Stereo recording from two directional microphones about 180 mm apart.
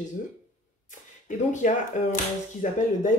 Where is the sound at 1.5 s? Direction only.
40° left (ahead or behind).